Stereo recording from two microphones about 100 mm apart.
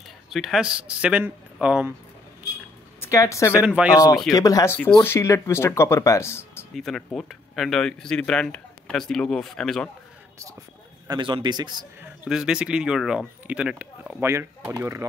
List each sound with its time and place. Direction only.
0.3 s speech: centre (ahead or behind)
3.0 s a woman's voice: 30° left (ahead or behind)
3.6 s speech: 10° right (ahead or behind)
4.3 s speech: 35° left (ahead or behind)
6.7 s speech: 5° left (ahead or behind)
11.1 s a man's voice: 55° right (ahead or behind)
12.3 s speech: 5° right (ahead or behind)
14.2 s speech: 20° right (ahead or behind)